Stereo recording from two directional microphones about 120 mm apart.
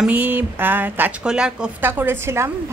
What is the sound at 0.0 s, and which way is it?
A woman's voice, 15° right (ahead or behind).